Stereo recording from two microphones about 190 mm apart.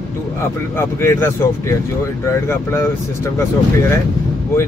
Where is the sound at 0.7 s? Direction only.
10° left (ahead or behind).